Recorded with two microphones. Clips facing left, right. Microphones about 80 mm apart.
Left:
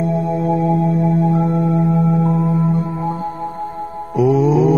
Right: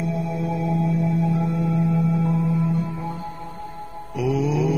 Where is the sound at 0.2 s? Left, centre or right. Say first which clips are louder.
Left 8 dB; left.